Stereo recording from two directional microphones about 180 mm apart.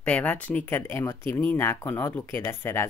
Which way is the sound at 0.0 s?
10° left (ahead or behind).